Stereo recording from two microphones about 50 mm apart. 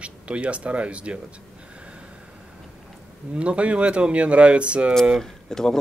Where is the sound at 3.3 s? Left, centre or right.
Right.